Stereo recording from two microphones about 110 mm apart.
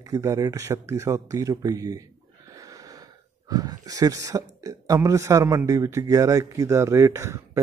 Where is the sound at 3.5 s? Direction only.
35° right (ahead or behind).